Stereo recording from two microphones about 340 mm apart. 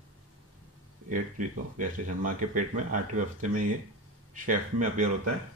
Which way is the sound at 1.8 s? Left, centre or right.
Right.